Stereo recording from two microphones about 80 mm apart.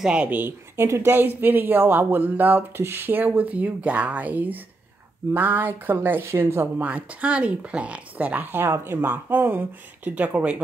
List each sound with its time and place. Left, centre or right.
0.0 s speech: centre; by 6.7 s right
6.8 s speech: centre